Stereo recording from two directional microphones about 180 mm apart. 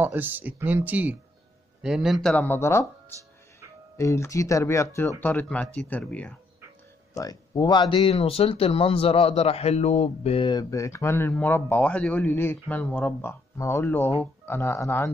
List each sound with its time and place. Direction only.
0.0 s speech: 10° right (ahead or behind); by 2.9 s 15° left (ahead or behind)
3.9 s speech: 15° left (ahead or behind)
7.2 s speech: 20° left (ahead or behind)